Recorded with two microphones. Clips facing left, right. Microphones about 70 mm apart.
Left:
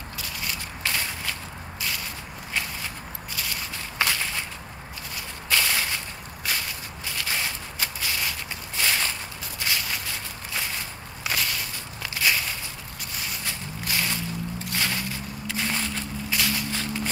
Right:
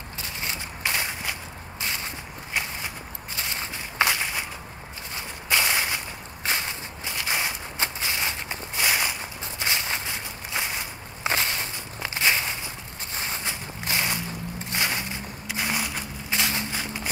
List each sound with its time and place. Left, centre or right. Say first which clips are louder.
0.2 s walk: right 1 dB; right
3.3 s walk: right 1 dB; right
13.1 s a sound: right 3 dB; right
16.3 s walk: right 1 dB; right